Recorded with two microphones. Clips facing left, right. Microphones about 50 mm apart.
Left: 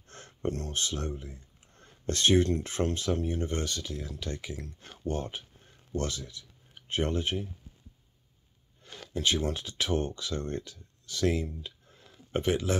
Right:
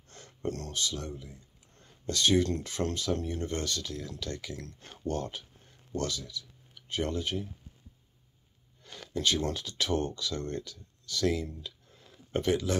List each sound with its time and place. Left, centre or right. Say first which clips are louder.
0.1 s a sound: left 4 dB; left
0.5 s speech: left 1 dB; left
8.8 s speech: even; left